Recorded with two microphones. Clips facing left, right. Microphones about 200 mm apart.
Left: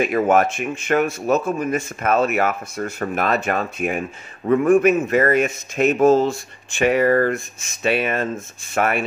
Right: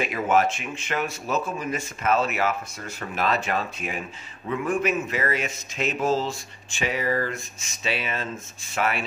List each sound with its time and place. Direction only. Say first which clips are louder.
0.0 s speech: left 5 dB; 50° left (ahead or behind)